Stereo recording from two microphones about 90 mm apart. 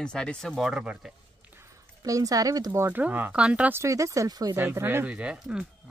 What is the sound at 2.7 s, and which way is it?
Speech, 25° right (ahead or behind).